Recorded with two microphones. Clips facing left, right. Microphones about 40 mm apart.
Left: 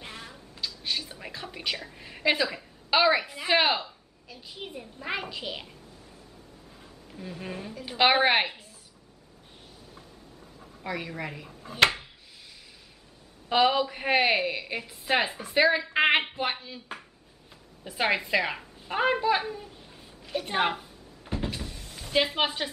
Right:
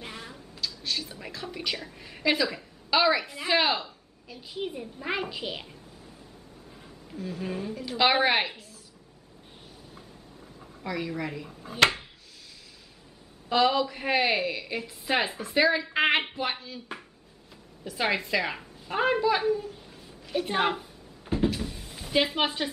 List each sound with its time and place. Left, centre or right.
0.0 s a sound: centre
0.6 s a sound: centre
1.1 s a woman's voice: centre
4.3 s a child's voice: centre
7.2 s a woman's voice: centre
8.0 s a woman's voice: centre
10.8 s a woman's voice: centre
13.5 s a woman's voice: centre
18.0 s a woman's voice: centre
20.2 s a sound: centre
21.5 s cupboard open or close: centre